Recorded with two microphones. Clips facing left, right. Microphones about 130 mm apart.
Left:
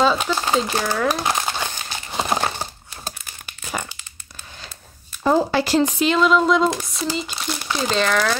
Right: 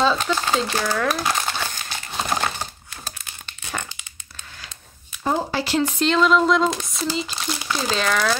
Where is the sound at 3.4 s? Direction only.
10° left (ahead or behind).